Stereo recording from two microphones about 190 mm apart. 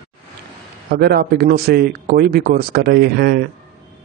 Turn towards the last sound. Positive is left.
turn(degrees=-55)  # may be behind; listen again after turning